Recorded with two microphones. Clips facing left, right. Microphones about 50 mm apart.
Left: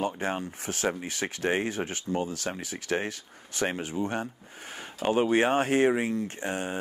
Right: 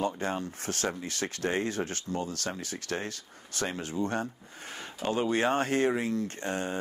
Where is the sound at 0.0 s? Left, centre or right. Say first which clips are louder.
Left 1 dB; left.